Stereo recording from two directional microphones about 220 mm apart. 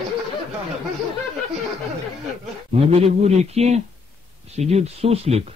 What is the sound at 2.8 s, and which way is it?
Speech, 25° right (ahead or behind).